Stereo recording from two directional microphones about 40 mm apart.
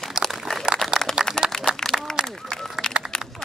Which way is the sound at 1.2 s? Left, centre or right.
Centre.